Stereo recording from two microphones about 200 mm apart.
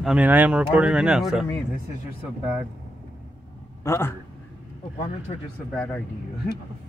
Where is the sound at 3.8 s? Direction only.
10° left (ahead or behind).